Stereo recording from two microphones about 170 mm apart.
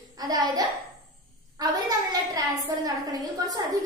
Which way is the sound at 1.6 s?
20° right (ahead or behind).